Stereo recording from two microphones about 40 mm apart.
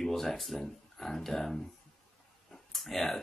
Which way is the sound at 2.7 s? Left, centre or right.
Centre.